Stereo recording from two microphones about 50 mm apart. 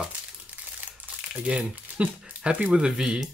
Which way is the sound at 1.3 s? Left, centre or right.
Right.